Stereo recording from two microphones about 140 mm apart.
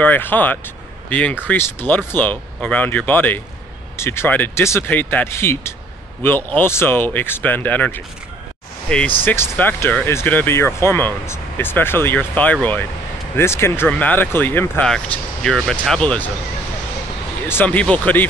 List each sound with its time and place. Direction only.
0.0 s speech: 15° left (ahead or behind)
17.5 s speech: 10° left (ahead or behind)